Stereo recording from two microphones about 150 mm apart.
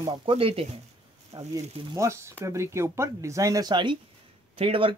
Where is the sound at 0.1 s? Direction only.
35° right (ahead or behind).